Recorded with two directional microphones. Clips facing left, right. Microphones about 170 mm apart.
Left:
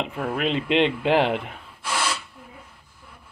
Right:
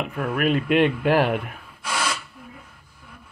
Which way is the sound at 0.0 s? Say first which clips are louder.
Right 2 dB; 25° left (ahead or behind).